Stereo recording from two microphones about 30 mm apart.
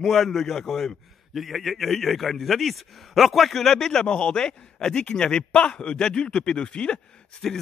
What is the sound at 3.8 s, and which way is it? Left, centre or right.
A man's voice, left.